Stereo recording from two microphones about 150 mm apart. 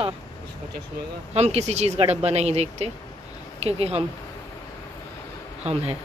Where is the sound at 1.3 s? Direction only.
45° right (ahead or behind).